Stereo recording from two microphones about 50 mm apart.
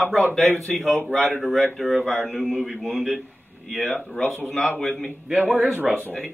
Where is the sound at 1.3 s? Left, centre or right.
Centre.